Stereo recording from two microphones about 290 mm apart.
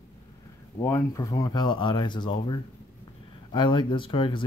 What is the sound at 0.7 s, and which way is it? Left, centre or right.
Speech, centre.